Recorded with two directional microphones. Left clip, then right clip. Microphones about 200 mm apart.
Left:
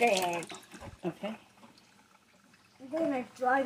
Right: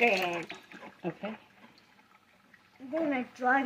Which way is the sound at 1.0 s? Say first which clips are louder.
Even; 10° right (ahead or behind).